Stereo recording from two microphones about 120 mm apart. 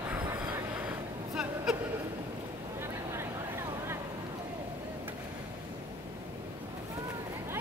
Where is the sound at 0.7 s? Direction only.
10° right (ahead or behind).